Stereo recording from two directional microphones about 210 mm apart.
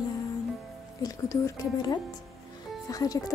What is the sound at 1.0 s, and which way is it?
A woman's voice, 15° left (ahead or behind).